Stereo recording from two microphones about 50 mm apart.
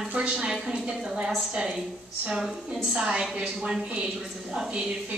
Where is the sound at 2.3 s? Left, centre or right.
Centre.